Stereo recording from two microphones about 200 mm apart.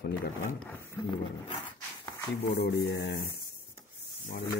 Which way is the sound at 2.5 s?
55° left (ahead or behind).